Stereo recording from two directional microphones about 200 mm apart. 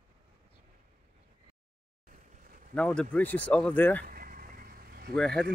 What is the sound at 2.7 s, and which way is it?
Speech, 5° left (ahead or behind).